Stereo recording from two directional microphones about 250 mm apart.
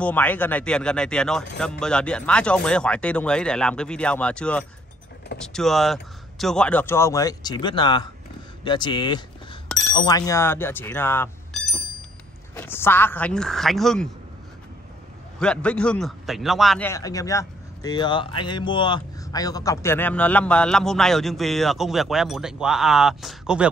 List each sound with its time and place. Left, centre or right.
0.0 s a man's voice: centre
15.3 s a man's voice: centre